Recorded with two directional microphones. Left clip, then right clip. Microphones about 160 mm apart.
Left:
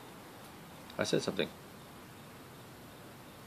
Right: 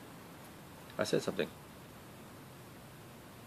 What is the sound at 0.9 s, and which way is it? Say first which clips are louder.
Speech: left 1 dB; 20° left (ahead or behind).